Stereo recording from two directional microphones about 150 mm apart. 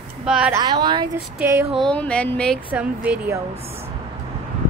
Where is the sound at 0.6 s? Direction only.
30° right (ahead or behind).